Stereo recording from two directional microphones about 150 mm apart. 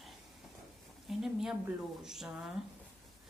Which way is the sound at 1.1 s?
Centre (ahead or behind).